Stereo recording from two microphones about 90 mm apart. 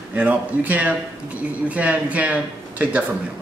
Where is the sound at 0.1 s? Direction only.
15° right (ahead or behind).